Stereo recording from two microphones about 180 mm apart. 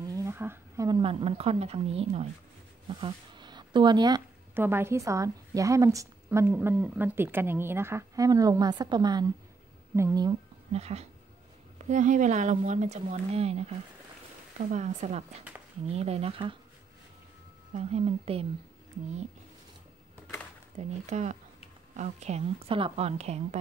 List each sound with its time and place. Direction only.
0.0 s a sound: 20° right (ahead or behind)
0.8 s speech: 25° right (ahead or behind)
4.6 s a woman's voice: 10° right (ahead or behind)
10.7 s speech: 35° right (ahead or behind)
17.7 s speech: 35° right (ahead or behind)
20.7 s speech: 40° right (ahead or behind)